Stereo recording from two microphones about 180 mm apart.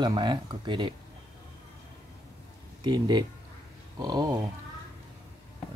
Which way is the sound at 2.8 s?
25° right (ahead or behind).